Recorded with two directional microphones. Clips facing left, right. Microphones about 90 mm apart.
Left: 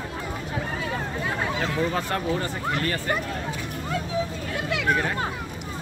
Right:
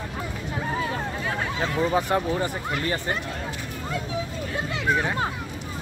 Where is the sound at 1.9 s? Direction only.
15° right (ahead or behind).